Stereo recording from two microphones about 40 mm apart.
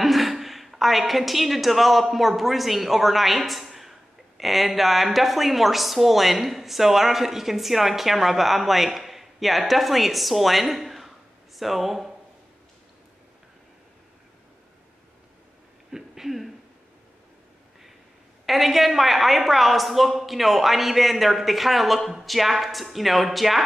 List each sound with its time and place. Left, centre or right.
0.0 s a woman's voice: centre
15.9 s a sound: centre
18.4 s speech: centre